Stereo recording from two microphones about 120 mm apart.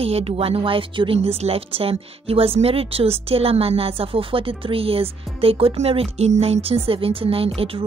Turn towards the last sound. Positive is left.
turn(degrees=-50)  # may be behind; listen again after turning